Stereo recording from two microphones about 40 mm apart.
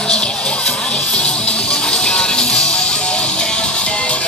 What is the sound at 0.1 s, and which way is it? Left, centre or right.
Music, left.